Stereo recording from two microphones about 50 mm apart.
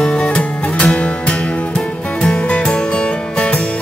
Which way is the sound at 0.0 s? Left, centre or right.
Left.